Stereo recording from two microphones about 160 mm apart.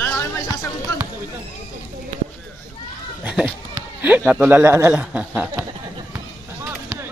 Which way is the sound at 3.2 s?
5° right (ahead or behind).